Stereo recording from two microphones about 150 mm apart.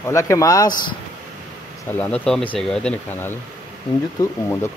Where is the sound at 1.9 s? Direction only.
10° left (ahead or behind).